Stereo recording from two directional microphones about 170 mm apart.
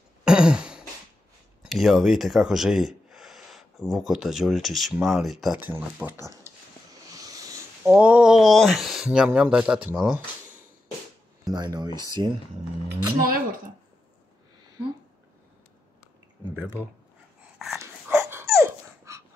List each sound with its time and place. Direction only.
0.2 s throat clearing: 5° right (ahead or behind)
1.6 s speech: centre (ahead or behind)
6.5 s a sound: 15° right (ahead or behind)
7.2 s speech: 20° right (ahead or behind)
11.4 s speech: 25° right (ahead or behind)
12.8 s speech: 60° right (ahead or behind)
17.7 s dog: 15° right (ahead or behind)